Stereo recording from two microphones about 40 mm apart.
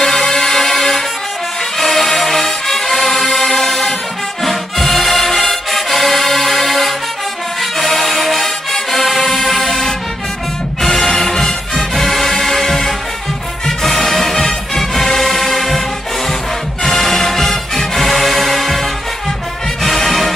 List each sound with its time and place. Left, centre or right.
0.0 s music: centre
16.8 s music: centre